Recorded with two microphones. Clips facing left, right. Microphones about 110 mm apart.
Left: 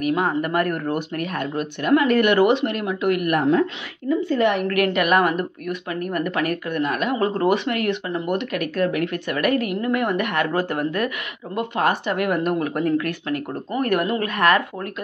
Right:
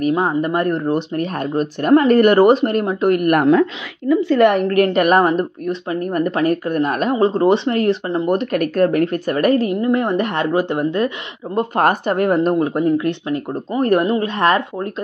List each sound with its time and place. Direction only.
0.0 s speech: 25° right (ahead or behind)
1.4 s speech: 35° right (ahead or behind)
4.1 s a woman's voice: 90° right
4.6 s speech: 35° right (ahead or behind)
11.5 s speech: 45° right (ahead or behind)
12.4 s speech: 25° right (ahead or behind)